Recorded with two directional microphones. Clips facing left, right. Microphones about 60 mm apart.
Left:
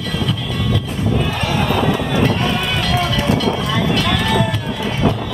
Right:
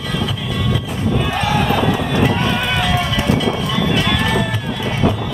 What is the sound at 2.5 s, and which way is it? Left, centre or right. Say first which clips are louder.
Music: right 1 dB; centre.